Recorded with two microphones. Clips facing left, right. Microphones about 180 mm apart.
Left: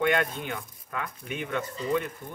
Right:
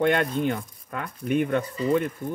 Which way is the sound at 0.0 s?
45° right (ahead or behind).